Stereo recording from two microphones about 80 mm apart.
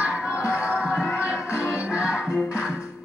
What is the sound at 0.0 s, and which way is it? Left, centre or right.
Music, left.